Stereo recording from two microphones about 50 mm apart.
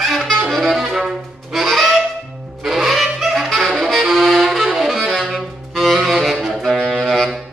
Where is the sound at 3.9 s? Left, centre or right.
Centre.